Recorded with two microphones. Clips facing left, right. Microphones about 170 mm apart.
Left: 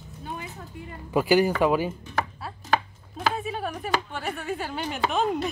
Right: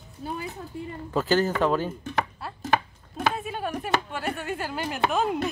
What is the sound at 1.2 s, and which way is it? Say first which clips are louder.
Speech: left 3 dB; 10° left (ahead or behind).